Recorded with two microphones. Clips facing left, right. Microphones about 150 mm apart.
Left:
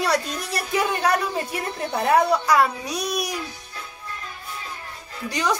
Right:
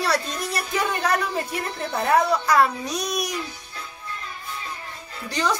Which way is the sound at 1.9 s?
10° left (ahead or behind).